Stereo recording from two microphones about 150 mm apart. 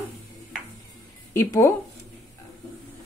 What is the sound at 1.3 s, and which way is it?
Speech, 20° left (ahead or behind).